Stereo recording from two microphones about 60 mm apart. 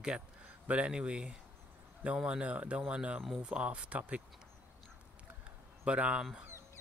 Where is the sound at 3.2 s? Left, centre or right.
Centre.